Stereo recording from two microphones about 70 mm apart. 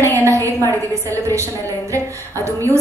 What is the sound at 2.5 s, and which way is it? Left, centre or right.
Speech, right.